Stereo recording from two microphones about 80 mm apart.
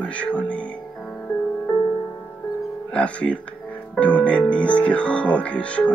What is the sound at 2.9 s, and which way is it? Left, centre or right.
Speech, centre.